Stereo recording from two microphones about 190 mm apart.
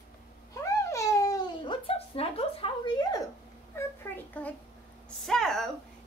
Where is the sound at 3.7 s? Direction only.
10° left (ahead or behind).